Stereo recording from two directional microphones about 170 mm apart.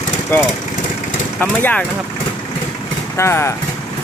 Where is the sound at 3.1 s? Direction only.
15° left (ahead or behind).